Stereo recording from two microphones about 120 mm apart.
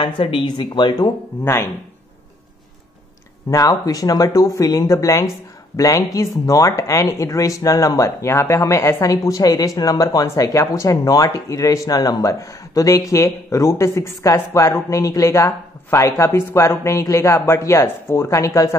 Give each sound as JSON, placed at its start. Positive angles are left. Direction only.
{"t": 0.0, "sound": "speech", "side_deg": 45}
{"t": 1.4, "sound": "speech", "side_deg": 20}
{"t": 3.4, "sound": "speech", "side_deg": 30}